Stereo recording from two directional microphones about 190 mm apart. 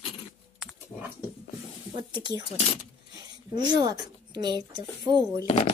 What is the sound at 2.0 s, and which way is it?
A woman's voice, 25° right (ahead or behind).